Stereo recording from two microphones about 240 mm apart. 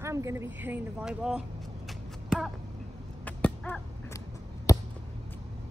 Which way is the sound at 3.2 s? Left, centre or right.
Centre.